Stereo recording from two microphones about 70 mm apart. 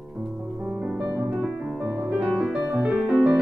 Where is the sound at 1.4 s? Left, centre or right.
Centre.